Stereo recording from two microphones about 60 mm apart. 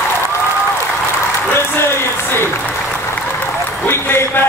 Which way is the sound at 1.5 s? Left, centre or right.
Left.